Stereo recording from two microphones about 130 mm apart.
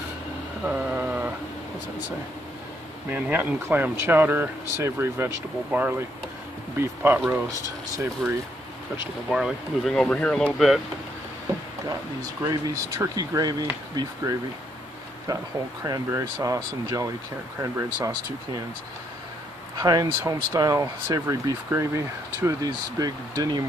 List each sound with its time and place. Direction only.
0.7 s a sound: 10° right (ahead or behind)
3.1 s speech: 15° right (ahead or behind)
8.2 s speech: 10° right (ahead or behind)
9.9 s speech: 10° left (ahead or behind)
12.2 s speech: 30° right (ahead or behind)
15.8 s speech: 25° right (ahead or behind)
19.8 s speech: 25° right (ahead or behind)